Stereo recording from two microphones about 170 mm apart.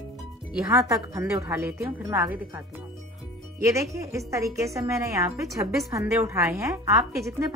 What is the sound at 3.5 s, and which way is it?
Speech, 15° right (ahead or behind).